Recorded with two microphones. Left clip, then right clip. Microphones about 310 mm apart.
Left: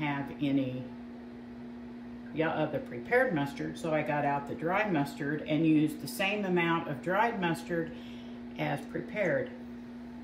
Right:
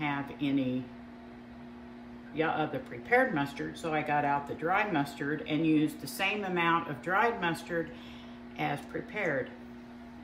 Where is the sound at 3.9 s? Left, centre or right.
Centre.